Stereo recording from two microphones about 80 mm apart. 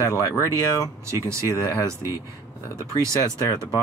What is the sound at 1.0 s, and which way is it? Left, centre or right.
Speech, right.